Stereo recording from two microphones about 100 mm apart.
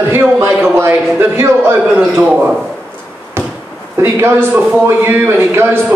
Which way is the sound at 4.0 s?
25° right (ahead or behind).